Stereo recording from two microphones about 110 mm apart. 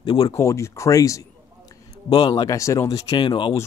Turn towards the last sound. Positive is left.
turn(degrees=50)  # may be behind; listen again after turning